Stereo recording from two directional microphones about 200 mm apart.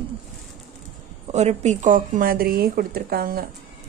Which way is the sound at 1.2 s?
35° right (ahead or behind).